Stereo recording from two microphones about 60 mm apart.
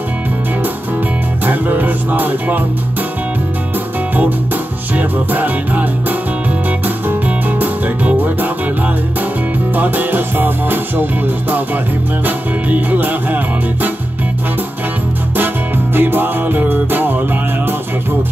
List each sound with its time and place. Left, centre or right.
1.4 s music: right
4.9 s music: right
9.8 s music: right
12.3 s music: right
15.3 s music: right